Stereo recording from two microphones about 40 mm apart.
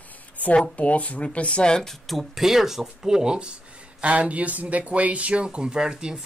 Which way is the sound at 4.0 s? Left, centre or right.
Right.